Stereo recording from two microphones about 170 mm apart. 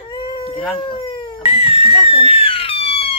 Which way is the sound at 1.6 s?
35° left (ahead or behind).